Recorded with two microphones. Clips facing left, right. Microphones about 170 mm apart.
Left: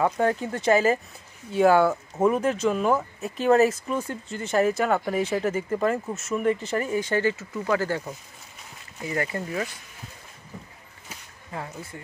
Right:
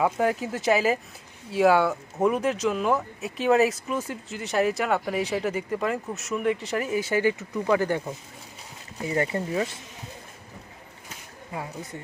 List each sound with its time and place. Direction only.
0.0 s speech: 5° right (ahead or behind)
9.0 s speech: 25° right (ahead or behind)
11.5 s speech: 15° right (ahead or behind)